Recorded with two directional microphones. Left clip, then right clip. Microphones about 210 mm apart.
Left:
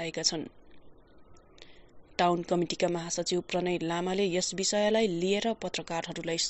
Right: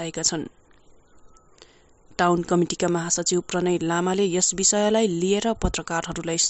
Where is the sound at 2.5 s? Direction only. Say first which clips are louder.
Right 6 dB; 35° right (ahead or behind).